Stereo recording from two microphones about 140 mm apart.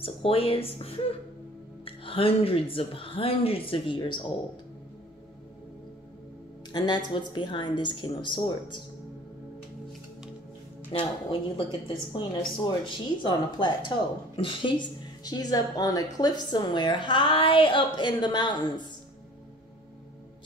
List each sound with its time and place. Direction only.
0.0 s a woman's voice: 40° left (ahead or behind)
6.7 s a woman's voice: 30° left (ahead or behind)
10.9 s a woman's voice: 40° left (ahead or behind)